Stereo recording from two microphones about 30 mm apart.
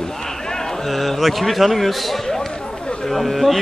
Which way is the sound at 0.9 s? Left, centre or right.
Centre.